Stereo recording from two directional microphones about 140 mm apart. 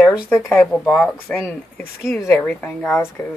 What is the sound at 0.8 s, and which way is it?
Speech, centre (ahead or behind).